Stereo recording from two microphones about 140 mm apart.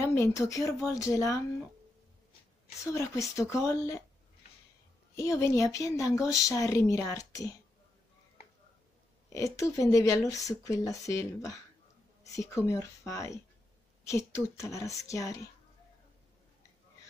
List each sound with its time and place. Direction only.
0.0 s speech: 20° left (ahead or behind)
2.8 s speech: 20° left (ahead or behind)
5.1 s speech: 20° left (ahead or behind)
9.3 s speech: 25° left (ahead or behind)